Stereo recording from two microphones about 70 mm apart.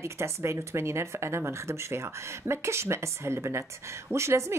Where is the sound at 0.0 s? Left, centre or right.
Right.